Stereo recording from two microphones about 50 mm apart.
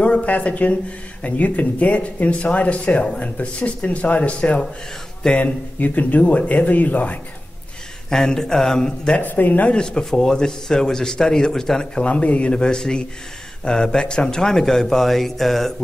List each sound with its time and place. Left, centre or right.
0.0 s speech: left
5.8 s speech: left
8.1 s speech: centre
9.2 s speech: left
9.7 s speech: centre
12.1 s speech: left; by 15.7 s centre